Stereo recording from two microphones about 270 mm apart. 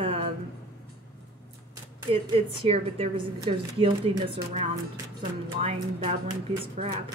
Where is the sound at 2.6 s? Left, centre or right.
Right.